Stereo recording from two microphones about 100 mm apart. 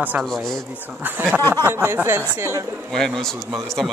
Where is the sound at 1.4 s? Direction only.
25° left (ahead or behind).